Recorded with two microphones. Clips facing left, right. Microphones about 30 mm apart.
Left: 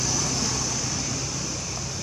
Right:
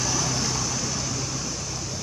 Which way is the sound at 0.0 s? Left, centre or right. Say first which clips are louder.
Right 1 dB; centre.